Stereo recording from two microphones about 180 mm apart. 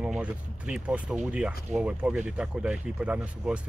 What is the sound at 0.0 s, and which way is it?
Speech, 5° right (ahead or behind).